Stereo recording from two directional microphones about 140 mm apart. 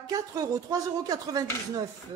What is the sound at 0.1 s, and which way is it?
Speech, 25° right (ahead or behind).